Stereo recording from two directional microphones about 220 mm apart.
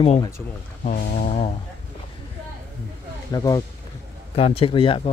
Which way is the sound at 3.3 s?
15° left (ahead or behind).